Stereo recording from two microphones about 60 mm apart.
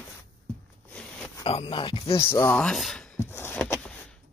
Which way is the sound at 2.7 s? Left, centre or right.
Centre.